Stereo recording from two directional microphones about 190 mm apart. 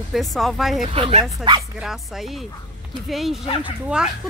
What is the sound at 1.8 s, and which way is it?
Speech, centre (ahead or behind).